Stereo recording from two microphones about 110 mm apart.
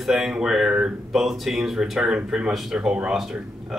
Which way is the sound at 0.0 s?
Centre (ahead or behind).